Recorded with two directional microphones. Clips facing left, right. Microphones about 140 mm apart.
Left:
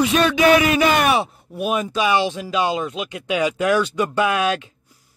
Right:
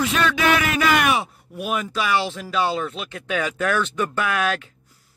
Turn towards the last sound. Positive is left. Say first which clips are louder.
# left 4 dB
turn(degrees=20)  # may be behind; listen again after turning